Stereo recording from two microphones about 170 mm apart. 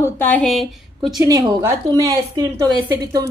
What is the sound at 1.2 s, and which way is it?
A woman's voice, 20° right (ahead or behind).